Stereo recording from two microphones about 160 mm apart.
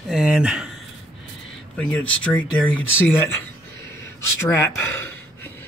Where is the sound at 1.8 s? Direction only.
10° left (ahead or behind).